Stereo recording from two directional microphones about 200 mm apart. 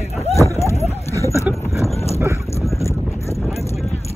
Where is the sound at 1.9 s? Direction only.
30° left (ahead or behind).